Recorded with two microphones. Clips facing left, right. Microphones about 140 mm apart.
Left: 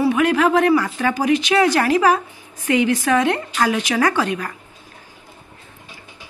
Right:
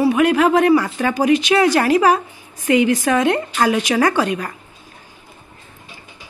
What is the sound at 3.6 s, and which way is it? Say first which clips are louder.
Speech: right 2 dB; 20° right (ahead or behind).